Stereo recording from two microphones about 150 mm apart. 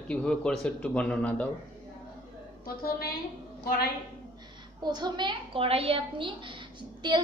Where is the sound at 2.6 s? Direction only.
85° left.